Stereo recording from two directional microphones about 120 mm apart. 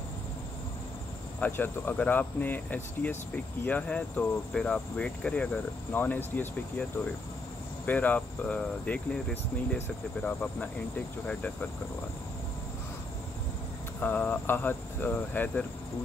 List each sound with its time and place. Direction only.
1.4 s speech: 15° left (ahead or behind)
7.8 s speech: 15° left (ahead or behind)
13.9 s speech: 15° left (ahead or behind)